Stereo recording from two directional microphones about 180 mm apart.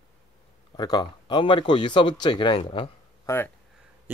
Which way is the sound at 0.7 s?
25° left (ahead or behind).